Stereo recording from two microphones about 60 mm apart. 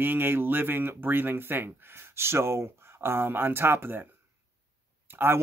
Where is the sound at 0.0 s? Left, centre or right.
Right.